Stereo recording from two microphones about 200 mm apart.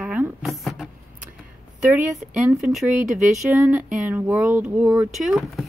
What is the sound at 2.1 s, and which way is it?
Speech, centre (ahead or behind).